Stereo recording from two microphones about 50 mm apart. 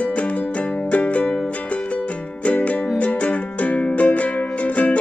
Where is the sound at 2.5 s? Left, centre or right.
Left.